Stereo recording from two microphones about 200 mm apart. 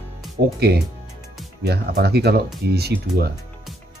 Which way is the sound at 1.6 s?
55° right (ahead or behind).